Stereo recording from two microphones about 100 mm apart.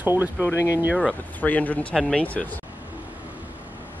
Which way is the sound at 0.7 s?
15° right (ahead or behind).